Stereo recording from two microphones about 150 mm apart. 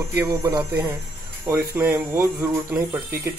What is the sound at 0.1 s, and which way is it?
Speech, 20° right (ahead or behind).